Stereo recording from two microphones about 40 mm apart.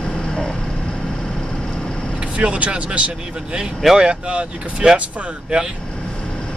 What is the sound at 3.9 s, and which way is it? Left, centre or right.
Speech, right.